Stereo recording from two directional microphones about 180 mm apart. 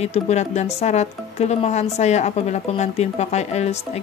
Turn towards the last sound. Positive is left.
turn(degrees=35)  # may be behind; listen again after turning